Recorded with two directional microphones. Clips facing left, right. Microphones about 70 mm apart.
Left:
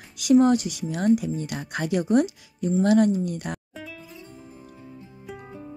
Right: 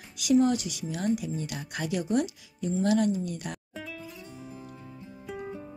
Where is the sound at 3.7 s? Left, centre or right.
Centre.